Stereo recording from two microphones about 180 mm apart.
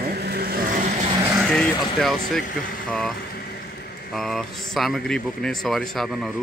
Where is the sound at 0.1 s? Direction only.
60° right (ahead or behind).